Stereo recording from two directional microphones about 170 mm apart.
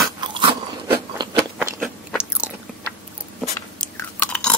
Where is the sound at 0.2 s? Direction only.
30° right (ahead or behind).